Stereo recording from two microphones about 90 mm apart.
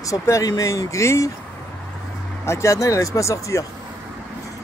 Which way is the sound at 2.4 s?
30° left (ahead or behind).